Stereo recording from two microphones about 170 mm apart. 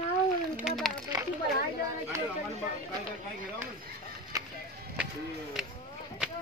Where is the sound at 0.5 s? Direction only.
5° right (ahead or behind).